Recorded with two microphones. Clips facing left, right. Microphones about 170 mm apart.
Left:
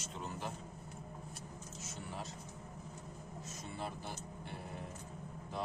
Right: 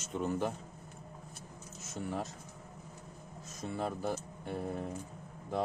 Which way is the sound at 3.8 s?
45° right (ahead or behind).